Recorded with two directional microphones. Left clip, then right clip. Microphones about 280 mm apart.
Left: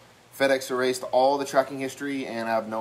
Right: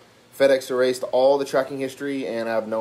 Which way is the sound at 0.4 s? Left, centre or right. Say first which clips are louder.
Right 5 dB; centre.